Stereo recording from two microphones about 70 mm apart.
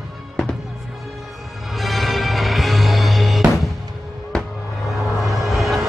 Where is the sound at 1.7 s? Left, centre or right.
Centre.